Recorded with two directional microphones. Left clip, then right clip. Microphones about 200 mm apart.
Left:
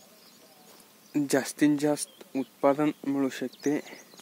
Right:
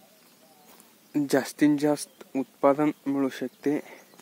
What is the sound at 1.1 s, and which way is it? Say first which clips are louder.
Speech: right 2 dB; 10° right (ahead or behind).